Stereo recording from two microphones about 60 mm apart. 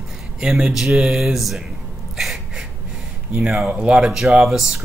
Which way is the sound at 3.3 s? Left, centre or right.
Centre.